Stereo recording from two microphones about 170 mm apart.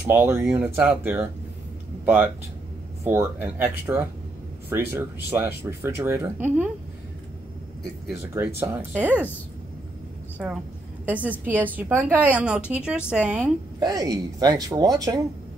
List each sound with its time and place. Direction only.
0.0 s speech: 10° right (ahead or behind)
3.0 s speech: 15° right (ahead or behind)
8.1 s speech: 10° right (ahead or behind)
10.4 s a woman's voice: 5° right (ahead or behind)
13.7 s speech: 20° right (ahead or behind)